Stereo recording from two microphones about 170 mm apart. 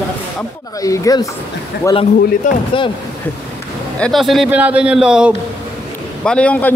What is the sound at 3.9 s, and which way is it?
A man's voice, 5° left (ahead or behind).